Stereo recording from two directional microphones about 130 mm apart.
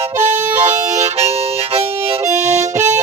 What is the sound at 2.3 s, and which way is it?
Harmonica, 60° right (ahead or behind).